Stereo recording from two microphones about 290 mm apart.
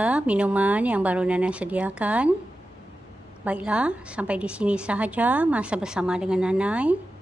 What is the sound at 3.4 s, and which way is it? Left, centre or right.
A woman's voice, centre.